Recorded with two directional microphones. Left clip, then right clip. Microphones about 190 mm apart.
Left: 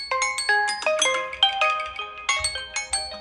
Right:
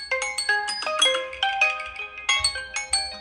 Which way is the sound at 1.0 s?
Centre (ahead or behind).